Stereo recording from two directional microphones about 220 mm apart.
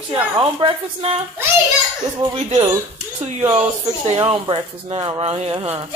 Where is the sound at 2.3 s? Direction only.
20° right (ahead or behind).